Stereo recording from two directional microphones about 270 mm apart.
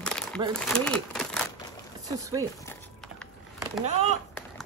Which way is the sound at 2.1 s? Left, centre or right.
Centre.